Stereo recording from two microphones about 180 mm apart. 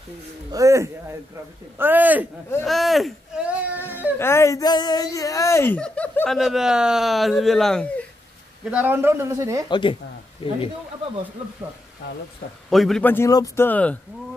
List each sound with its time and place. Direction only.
0.5 s speech: 15° right (ahead or behind)
2.6 s a sound: centre (ahead or behind)
4.2 s speech: 15° left (ahead or behind)
8.6 s speech: 10° right (ahead or behind)
9.7 s speech: 25° left (ahead or behind)
12.6 s speech: centre (ahead or behind)